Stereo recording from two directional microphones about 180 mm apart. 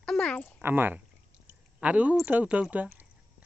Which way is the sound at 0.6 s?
10° right (ahead or behind).